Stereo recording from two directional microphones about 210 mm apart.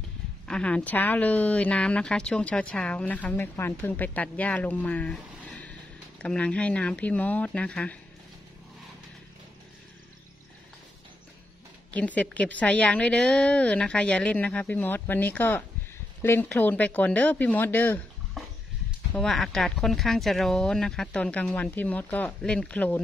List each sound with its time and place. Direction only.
0.5 s a woman's voice: 5° left (ahead or behind)
11.9 s a woman's voice: 5° left (ahead or behind)